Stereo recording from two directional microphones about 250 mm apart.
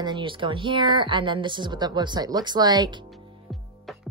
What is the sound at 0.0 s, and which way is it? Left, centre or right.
Speech, centre.